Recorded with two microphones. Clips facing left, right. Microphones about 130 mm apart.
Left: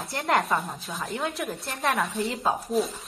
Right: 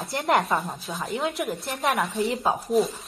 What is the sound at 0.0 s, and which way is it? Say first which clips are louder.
A woman's voice: right 2 dB; 15° right (ahead or behind).